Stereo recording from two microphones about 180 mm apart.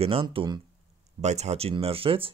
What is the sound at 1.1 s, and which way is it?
Speech, 35° right (ahead or behind).